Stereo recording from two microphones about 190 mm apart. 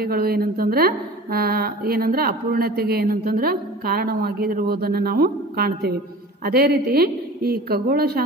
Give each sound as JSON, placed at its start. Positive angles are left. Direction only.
{"t": 0.0, "sound": "a woman's voice", "side_deg": -55}